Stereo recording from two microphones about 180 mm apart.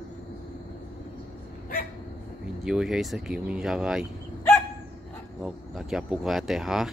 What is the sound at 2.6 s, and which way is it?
Speech, 5° right (ahead or behind).